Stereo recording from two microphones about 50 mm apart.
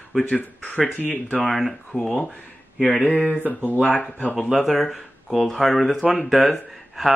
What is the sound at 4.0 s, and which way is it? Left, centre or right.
Speech, left.